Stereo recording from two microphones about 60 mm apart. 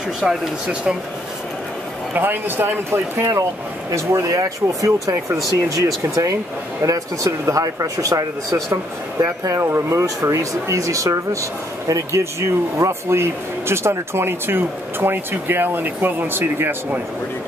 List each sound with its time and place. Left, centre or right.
2.1 s speech: right
3.9 s speech: right
6.8 s speech: right
7.6 s speech: right
9.2 s speech: right
9.6 s speech: right
11.9 s speech: right